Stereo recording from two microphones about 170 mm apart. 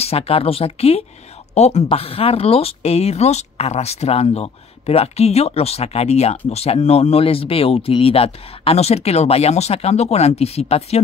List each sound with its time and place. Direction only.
0.0 s speech: 35° left (ahead or behind)